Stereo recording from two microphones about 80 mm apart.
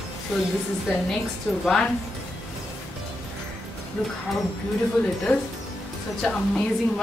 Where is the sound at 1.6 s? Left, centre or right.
Centre.